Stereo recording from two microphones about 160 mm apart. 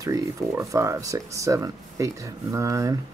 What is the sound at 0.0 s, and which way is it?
Speech, 20° right (ahead or behind).